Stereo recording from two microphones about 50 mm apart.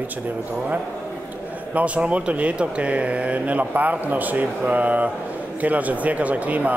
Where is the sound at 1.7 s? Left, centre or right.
Right.